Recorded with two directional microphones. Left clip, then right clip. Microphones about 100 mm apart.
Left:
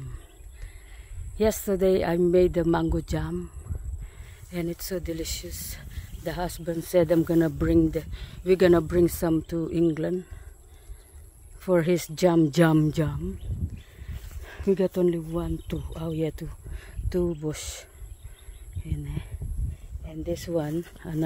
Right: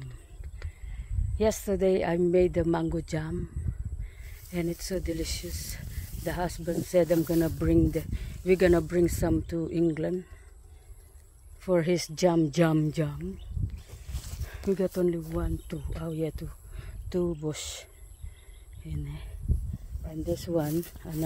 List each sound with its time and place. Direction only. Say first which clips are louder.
1.3 s speech: left 2 dB; 30° left (ahead or behind)
4.5 s speech: left 1 dB; 30° left (ahead or behind)
11.6 s speech: left 3 dB; 35° left (ahead or behind)
12.4 s speech: left 4 dB; 55° left (ahead or behind)
14.4 s speech: left 4 dB; 50° left (ahead or behind)
15.7 s speech: left 4 dB; 60° left (ahead or behind)
17.1 s speech: left 3 dB; 25° left (ahead or behind)
18.9 s speech: left 4 dB; 20° left (ahead or behind)
20.2 s speech: left 1 dB; 40° left (ahead or behind); by 21.2 s 55° left (ahead or behind)